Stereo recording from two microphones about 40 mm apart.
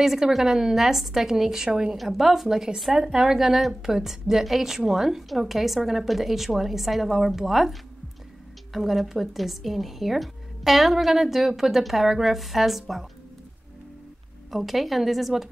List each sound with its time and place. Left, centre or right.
0.0 s a woman's voice: centre
2.0 s a woman's voice: centre
8.7 s a woman's voice: centre
14.5 s a woman's voice: centre